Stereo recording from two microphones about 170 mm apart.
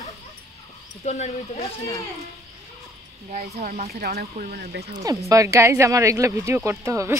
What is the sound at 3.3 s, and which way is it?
Speech, 45° right (ahead or behind).